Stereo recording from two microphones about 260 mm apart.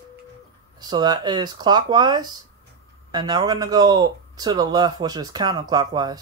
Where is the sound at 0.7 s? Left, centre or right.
Centre.